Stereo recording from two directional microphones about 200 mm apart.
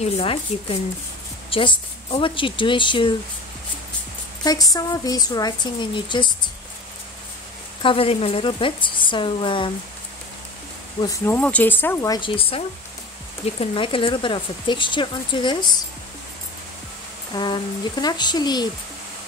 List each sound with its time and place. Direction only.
0.0 s speech: 30° left (ahead or behind)
4.4 s speech: 20° left (ahead or behind)
7.8 s speech: 30° left (ahead or behind)
11.0 s speech: 15° left (ahead or behind)
17.3 s speech: 20° left (ahead or behind)